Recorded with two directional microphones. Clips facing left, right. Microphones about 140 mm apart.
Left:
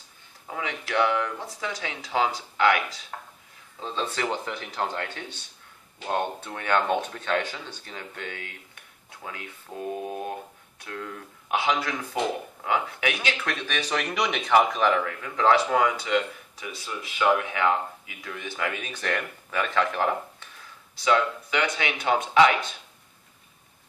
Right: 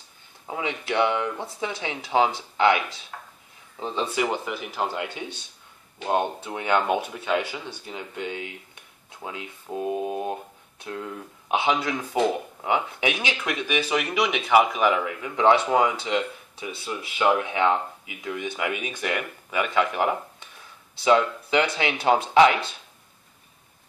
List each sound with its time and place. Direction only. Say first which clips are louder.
0.5 s speech: right 3 dB; 20° right (ahead or behind)
21.0 s speech: right 3 dB; 25° right (ahead or behind)